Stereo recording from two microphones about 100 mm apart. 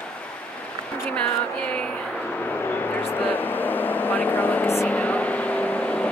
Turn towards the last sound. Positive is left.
turn(degrees=15)  # may be behind; listen again after turning